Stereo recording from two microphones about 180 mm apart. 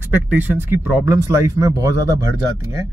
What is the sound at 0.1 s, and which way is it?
Speech, 10° right (ahead or behind).